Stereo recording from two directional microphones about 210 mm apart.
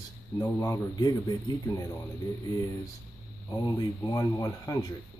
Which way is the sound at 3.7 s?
15° left (ahead or behind).